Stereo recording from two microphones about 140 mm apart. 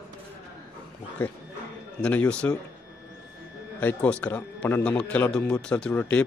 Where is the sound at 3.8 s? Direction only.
10° left (ahead or behind).